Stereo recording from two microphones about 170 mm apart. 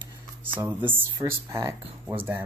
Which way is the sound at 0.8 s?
30° right (ahead or behind).